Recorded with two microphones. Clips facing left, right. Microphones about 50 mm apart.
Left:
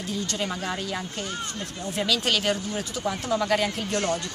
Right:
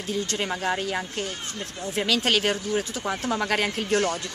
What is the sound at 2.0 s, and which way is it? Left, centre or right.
Speech, right.